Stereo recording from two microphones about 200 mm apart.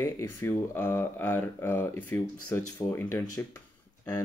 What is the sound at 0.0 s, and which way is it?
Speech, 15° left (ahead or behind).